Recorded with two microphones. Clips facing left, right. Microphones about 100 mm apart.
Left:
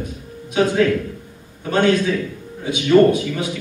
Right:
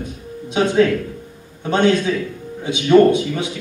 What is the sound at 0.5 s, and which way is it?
A man's voice, 25° right (ahead or behind).